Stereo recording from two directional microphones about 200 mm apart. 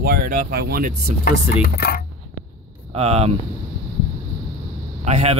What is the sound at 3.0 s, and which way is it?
Speech, 30° right (ahead or behind).